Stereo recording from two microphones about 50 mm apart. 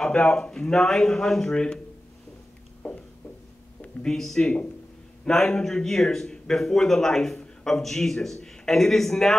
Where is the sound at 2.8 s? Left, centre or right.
Left.